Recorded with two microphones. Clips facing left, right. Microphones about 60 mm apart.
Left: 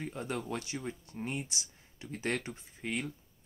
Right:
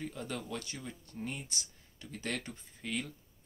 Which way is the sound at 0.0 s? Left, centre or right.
Left.